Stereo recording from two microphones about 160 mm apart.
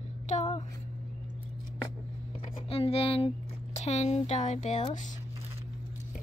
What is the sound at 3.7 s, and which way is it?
Speech, 45° left (ahead or behind).